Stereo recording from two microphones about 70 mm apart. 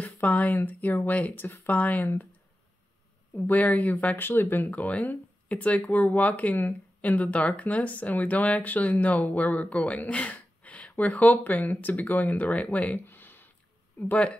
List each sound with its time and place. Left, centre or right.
0.0 s speech: left
3.3 s speech: left
13.0 s a sound: left
14.0 s speech: left